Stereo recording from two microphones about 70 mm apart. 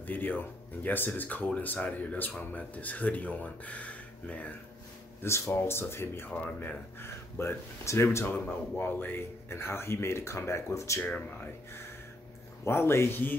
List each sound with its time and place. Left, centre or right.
0.0 s speech: left
5.2 s speech: left
11.0 s speech: left
12.6 s speech: left